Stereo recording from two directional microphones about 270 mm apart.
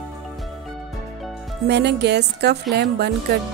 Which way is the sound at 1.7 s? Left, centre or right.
Right.